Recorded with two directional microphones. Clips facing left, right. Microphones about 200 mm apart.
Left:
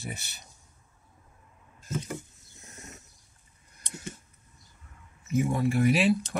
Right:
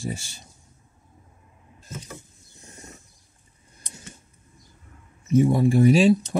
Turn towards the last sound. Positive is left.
turn(degrees=-30)  # may be behind; listen again after turning